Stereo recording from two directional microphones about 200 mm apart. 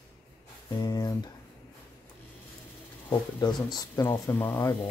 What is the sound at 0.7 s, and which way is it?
Speech, 20° left (ahead or behind).